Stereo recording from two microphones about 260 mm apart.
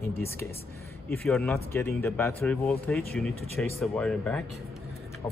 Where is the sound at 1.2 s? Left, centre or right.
Centre.